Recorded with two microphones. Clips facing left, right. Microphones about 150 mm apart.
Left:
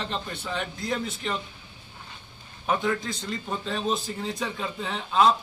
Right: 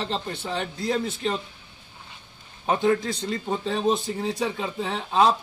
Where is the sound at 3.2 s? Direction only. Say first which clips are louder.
Right 5 dB; 25° right (ahead or behind).